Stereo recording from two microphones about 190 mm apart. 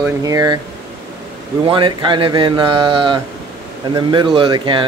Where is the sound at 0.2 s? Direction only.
20° right (ahead or behind).